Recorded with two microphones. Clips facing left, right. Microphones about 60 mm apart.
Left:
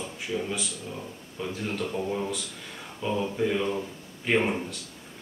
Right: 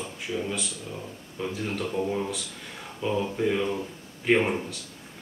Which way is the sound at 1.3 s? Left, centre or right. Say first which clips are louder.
Right 1 dB; centre.